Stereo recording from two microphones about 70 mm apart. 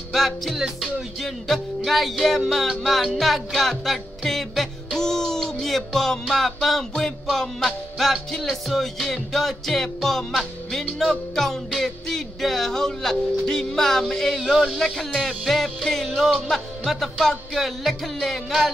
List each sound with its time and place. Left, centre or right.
0.1 s music: centre